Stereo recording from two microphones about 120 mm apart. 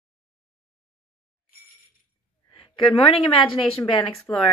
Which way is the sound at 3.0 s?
50° left (ahead or behind).